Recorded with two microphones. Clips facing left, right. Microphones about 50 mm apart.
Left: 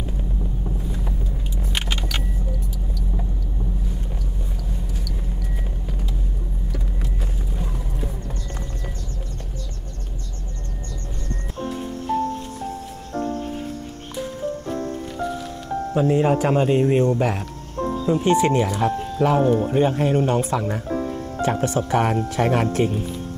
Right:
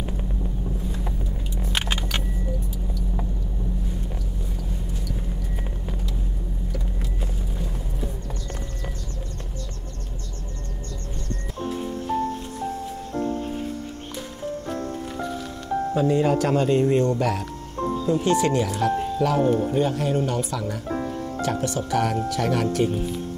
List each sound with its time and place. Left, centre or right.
15.9 s speech: left